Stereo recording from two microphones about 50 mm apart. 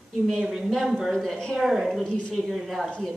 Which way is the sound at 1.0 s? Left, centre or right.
Centre.